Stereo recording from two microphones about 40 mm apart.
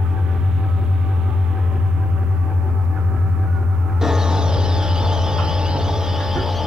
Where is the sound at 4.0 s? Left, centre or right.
Centre.